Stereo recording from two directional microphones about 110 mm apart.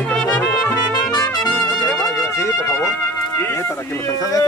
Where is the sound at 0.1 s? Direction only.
10° left (ahead or behind).